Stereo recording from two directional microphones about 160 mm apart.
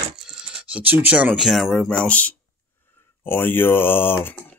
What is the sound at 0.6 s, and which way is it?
Speech, 10° right (ahead or behind).